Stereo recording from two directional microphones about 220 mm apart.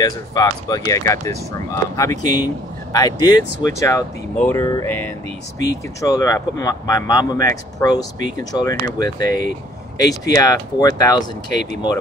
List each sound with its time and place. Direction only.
0.0 s speech: 15° left (ahead or behind)